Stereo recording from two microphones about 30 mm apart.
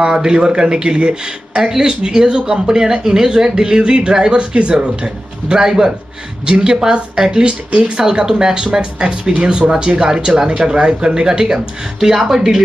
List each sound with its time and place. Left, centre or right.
0.0 s speech: right
1.6 s speech: centre